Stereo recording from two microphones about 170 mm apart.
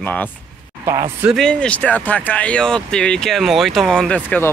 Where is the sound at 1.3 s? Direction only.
5° left (ahead or behind).